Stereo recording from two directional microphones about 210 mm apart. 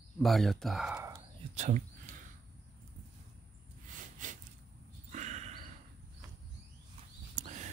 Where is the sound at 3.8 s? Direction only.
35° right (ahead or behind).